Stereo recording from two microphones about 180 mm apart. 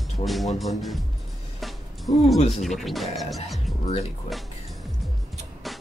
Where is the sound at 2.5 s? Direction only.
Centre (ahead or behind).